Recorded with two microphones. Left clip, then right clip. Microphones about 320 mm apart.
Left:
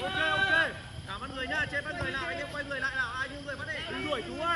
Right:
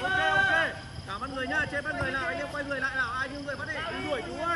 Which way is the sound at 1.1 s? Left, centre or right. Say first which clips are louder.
Right 3 dB; right.